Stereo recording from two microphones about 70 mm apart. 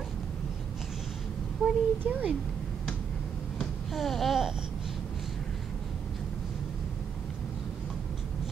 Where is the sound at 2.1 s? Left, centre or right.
Centre.